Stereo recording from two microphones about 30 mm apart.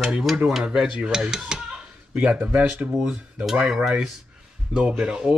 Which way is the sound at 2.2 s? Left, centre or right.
Right.